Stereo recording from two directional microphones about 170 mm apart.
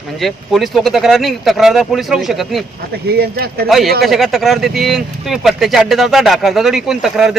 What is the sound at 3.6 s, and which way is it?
Speech, centre (ahead or behind).